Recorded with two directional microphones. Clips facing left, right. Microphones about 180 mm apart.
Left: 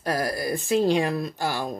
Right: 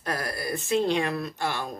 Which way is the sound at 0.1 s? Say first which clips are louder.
Left 5 dB; 35° left (ahead or behind).